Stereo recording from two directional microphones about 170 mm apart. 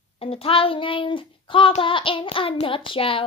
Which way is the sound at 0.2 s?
35° left (ahead or behind).